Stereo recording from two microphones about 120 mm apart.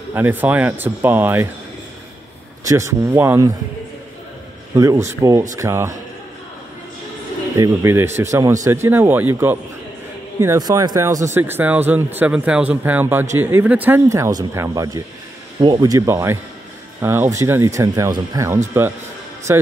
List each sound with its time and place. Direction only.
0.1 s speech: 15° right (ahead or behind)
2.6 s speech: 25° right (ahead or behind)
4.7 s speech: 25° right (ahead or behind)
7.5 s speech: 25° right (ahead or behind)
10.6 s speech: 30° right (ahead or behind)